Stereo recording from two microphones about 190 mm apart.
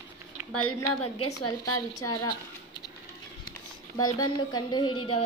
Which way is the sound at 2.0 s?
20° left (ahead or behind).